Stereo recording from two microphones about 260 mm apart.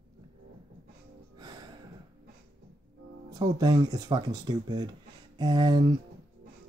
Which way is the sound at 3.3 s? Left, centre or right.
Centre.